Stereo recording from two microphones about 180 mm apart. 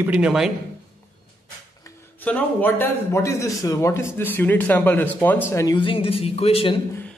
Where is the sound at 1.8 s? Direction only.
10° left (ahead or behind); by 6.8 s 30° left (ahead or behind).